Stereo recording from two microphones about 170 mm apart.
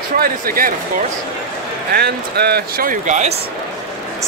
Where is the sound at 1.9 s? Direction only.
70° right (ahead or behind); by 3.4 s 45° right (ahead or behind).